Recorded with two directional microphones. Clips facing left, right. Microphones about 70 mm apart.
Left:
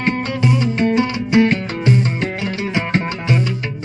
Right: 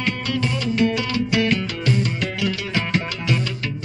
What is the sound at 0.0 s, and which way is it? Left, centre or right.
Music, left.